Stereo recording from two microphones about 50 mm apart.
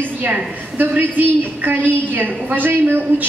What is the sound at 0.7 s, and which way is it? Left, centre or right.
A woman's voice, right.